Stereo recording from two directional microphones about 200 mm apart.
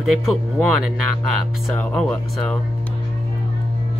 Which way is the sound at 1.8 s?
5° left (ahead or behind).